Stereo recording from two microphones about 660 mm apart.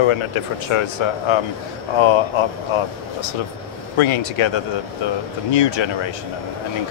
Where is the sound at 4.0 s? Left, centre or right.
Left.